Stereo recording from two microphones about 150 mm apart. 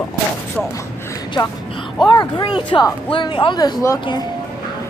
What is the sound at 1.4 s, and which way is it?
Speech, 25° left (ahead or behind).